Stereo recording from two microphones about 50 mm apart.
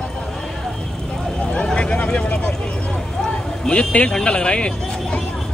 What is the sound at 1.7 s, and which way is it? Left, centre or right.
Speech, left.